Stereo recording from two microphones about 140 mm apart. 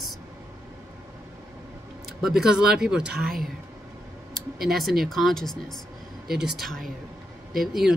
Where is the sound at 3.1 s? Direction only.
90° right.